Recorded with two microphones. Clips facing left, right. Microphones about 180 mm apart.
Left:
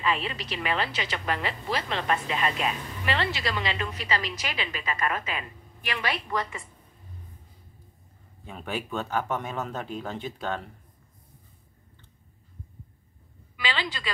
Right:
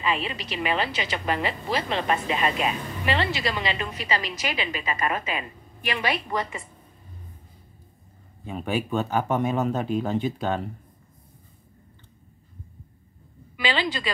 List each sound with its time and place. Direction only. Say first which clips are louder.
0.0 s speech: right 1 dB; 10° right (ahead or behind)
8.5 s speech: right 6 dB; 10° right (ahead or behind)